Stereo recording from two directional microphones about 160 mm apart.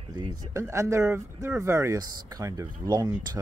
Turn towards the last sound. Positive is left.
turn(degrees=-20)  # may be behind; listen again after turning